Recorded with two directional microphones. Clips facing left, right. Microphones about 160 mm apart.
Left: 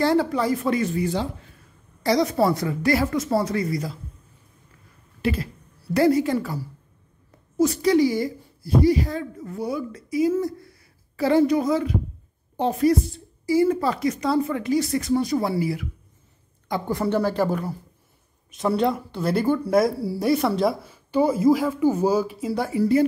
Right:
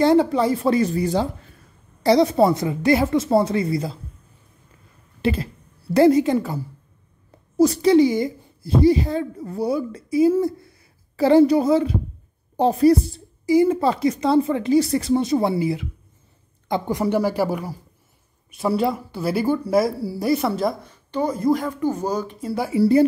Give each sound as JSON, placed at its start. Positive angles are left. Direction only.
{"t": 0.0, "sound": "speech", "side_deg": -20}
{"t": 5.2, "sound": "speech", "side_deg": -25}
{"t": 7.5, "sound": "speech", "side_deg": -35}
{"t": 13.5, "sound": "speech", "side_deg": -20}
{"t": 22.8, "sound": "speech", "side_deg": -30}